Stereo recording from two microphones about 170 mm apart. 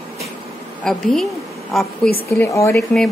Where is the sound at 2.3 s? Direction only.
15° left (ahead or behind).